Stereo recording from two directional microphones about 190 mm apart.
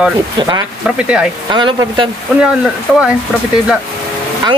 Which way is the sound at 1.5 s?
25° right (ahead or behind).